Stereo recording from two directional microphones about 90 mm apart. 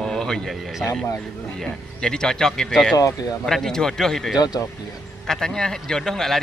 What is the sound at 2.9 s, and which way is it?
Speech, 40° left (ahead or behind).